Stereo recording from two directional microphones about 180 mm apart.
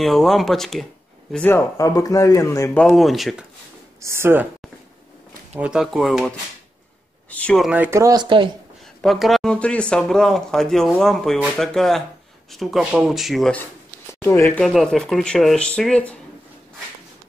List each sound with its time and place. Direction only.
0.0 s speech: centre (ahead or behind)
2.8 s speech: centre (ahead or behind)
4.0 s speech: 15° right (ahead or behind)
5.6 s speech: 5° right (ahead or behind)
7.7 s speech: 10° right (ahead or behind)
9.0 s speech: centre (ahead or behind)